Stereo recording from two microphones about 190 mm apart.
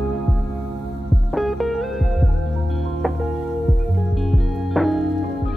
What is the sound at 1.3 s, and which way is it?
Music, centre (ahead or behind).